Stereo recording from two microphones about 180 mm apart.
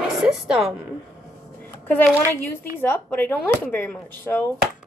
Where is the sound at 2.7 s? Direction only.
10° left (ahead or behind).